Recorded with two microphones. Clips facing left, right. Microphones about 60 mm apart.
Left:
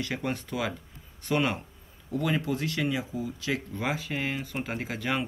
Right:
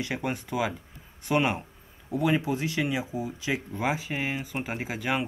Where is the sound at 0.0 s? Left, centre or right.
Centre.